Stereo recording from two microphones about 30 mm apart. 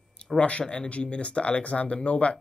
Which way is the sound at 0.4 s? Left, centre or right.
Left.